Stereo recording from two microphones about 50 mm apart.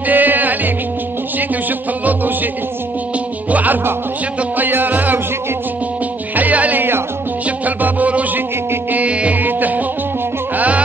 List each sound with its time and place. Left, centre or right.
0.1 s music: right
3.4 s music: right
6.3 s music: right
9.4 s music: right